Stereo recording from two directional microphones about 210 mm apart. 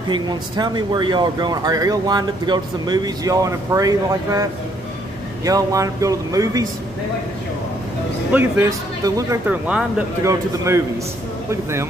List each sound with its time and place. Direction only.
0.1 s speech: 20° right (ahead or behind)
8.3 s speech: 10° right (ahead or behind)